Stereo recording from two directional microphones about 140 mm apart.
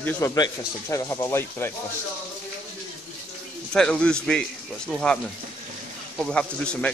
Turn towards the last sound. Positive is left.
turn(degrees=5)  # may be behind; listen again after turning